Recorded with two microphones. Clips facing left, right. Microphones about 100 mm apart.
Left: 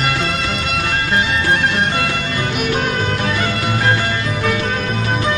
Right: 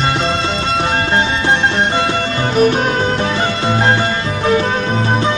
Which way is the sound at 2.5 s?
35° right (ahead or behind).